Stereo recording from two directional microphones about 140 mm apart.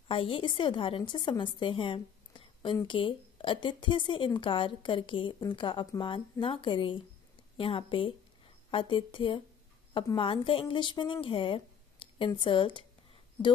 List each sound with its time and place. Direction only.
0.1 s a woman's voice: 40° left (ahead or behind)